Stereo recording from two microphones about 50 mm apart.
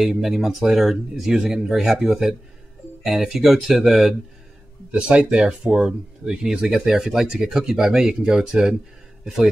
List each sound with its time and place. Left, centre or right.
0.0 s speech: centre
4.9 s speech: centre